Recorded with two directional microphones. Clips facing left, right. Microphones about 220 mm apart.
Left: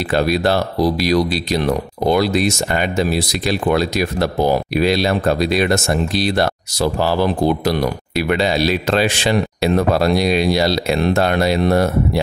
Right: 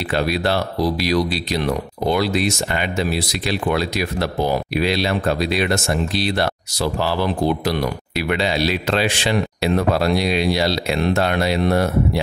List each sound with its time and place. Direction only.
0.1 s speech: 45° left (ahead or behind)